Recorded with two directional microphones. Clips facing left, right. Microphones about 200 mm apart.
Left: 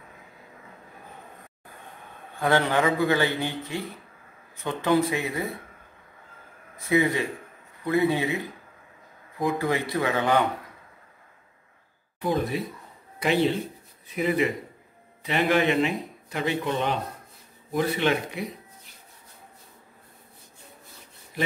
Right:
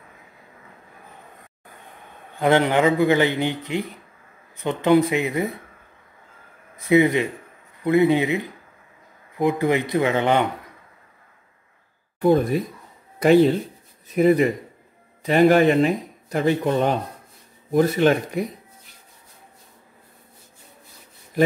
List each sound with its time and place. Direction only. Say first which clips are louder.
2.4 s a man's voice: right 5 dB; 20° right (ahead or behind)
6.9 s a man's voice: right 6 dB; 20° right (ahead or behind)
9.4 s a man's voice: right 5 dB; 20° right (ahead or behind)
12.2 s speech: right 8 dB; 50° right (ahead or behind)